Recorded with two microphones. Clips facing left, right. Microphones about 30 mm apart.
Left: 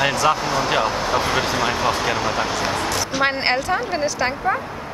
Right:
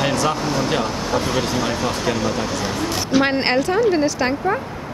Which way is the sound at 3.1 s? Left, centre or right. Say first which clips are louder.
Right 4 dB; centre.